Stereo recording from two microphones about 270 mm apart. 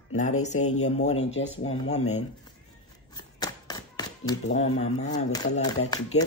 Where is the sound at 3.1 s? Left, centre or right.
Centre.